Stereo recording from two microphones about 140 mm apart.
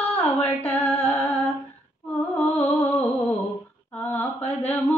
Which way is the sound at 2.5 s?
15° left (ahead or behind).